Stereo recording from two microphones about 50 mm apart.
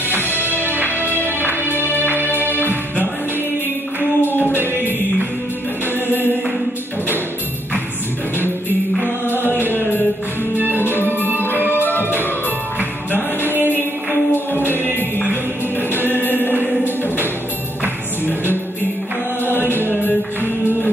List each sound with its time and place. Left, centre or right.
0.1 s music: right
4.2 s a capella: left
9.4 s chant: right
10.5 s music: right
10.8 s music: left
11.1 s music: right
11.7 s music: left
14.7 s music: left
16.2 s choir: right
17.8 s music: right
19.6 s chant: right